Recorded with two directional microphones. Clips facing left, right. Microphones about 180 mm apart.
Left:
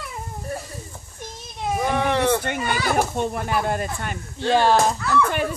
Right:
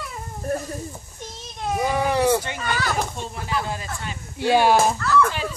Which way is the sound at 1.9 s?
10° right (ahead or behind).